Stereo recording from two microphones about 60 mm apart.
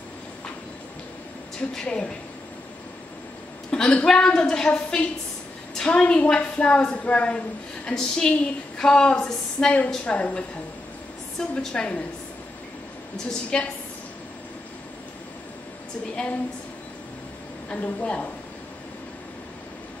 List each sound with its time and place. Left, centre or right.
1.7 s a woman's voice: centre
3.7 s a woman's voice: centre
13.3 s a woman's voice: centre
17.8 s a woman's voice: left